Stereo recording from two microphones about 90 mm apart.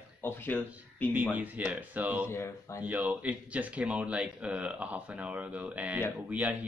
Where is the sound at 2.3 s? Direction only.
30° left (ahead or behind).